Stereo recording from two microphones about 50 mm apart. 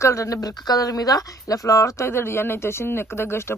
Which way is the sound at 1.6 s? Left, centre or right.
Left.